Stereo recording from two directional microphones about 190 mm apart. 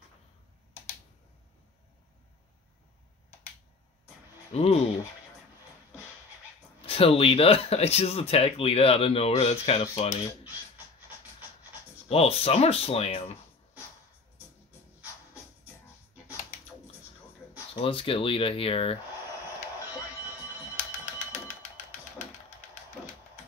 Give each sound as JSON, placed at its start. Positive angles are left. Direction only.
{"t": 4.6, "sound": "speech", "side_deg": 35}
{"t": 6.9, "sound": "speech", "side_deg": 30}
{"t": 12.1, "sound": "speech", "side_deg": 30}
{"t": 17.7, "sound": "speech", "side_deg": 30}
{"t": 20.7, "sound": "music", "side_deg": 40}